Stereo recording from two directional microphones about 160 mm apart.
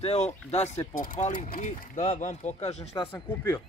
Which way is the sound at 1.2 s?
55° left (ahead or behind).